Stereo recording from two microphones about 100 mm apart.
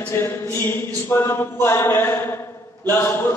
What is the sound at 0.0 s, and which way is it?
A man's voice, 20° left (ahead or behind).